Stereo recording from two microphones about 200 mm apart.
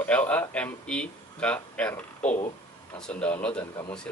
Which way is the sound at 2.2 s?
35° left (ahead or behind).